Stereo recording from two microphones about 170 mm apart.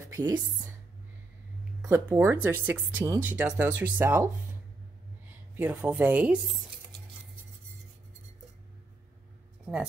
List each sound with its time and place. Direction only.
0.1 s speech: 20° right (ahead or behind)
1.8 s speech: 15° right (ahead or behind)
5.6 s speech: 10° right (ahead or behind)